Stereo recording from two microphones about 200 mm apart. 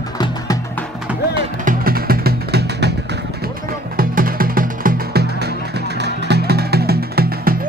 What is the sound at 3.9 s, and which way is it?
Music, 45° right (ahead or behind).